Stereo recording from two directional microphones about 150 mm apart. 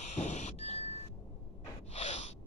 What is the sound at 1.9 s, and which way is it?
Gasp, 45° left (ahead or behind).